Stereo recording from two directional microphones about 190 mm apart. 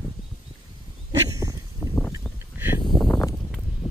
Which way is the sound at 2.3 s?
10° right (ahead or behind).